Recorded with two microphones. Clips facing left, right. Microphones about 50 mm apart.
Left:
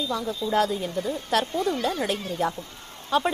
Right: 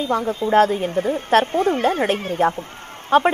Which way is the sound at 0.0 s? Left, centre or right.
Right.